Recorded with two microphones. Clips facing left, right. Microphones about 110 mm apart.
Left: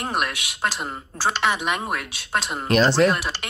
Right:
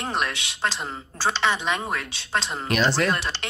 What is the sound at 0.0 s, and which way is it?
Speech, 5° left (ahead or behind).